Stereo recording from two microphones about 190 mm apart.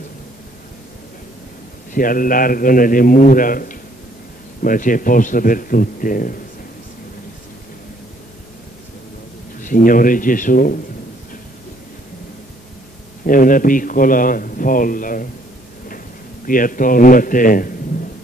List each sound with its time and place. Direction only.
2.0 s a man's voice: 45° left (ahead or behind)
9.6 s a man's voice: 45° left (ahead or behind)
13.3 s a man's voice: 45° left (ahead or behind)
16.4 s a man's voice: 45° left (ahead or behind)